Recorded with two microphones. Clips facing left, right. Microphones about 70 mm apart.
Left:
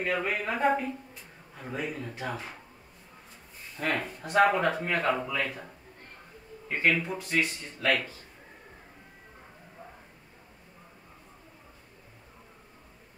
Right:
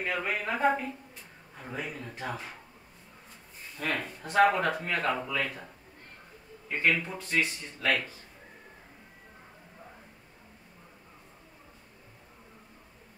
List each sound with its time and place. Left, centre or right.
0.0 s a man's voice: centre
3.8 s speech: left
4.2 s a man's voice: centre
6.8 s a man's voice: centre
7.2 s speech: centre
7.4 s a man's voice: centre